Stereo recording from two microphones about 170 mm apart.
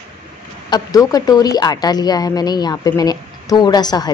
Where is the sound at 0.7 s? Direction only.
20° left (ahead or behind).